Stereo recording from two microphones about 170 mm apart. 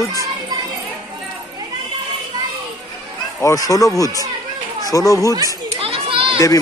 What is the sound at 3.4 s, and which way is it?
Speech, 20° left (ahead or behind).